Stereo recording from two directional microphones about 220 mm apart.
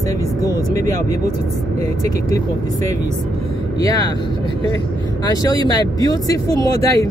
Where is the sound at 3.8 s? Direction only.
15° left (ahead or behind).